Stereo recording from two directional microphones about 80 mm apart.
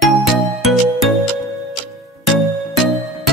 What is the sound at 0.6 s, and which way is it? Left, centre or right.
Music, centre.